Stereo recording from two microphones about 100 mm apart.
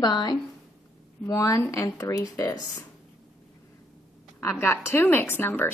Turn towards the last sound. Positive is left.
turn(degrees=20)  # may be behind; listen again after turning